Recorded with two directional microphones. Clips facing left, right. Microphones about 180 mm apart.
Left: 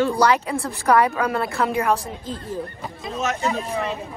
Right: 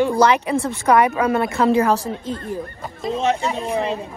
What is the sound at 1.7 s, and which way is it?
Speech, 35° right (ahead or behind).